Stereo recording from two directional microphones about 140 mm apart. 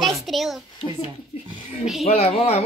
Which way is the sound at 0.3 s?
Centre (ahead or behind).